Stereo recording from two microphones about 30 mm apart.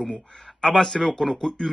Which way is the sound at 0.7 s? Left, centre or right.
Centre.